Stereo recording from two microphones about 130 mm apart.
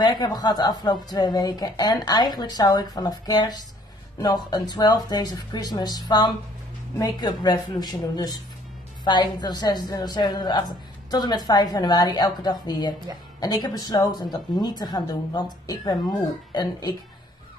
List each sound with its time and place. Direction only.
0.0 s a woman's voice: 30° left (ahead or behind)